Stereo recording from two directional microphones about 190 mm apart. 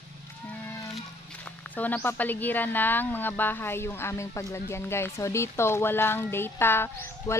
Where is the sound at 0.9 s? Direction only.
10° left (ahead or behind).